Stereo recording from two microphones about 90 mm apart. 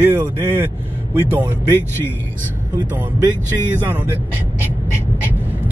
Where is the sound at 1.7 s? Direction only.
25° left (ahead or behind).